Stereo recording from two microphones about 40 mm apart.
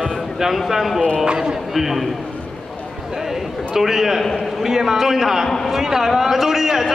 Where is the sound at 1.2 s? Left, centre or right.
Right.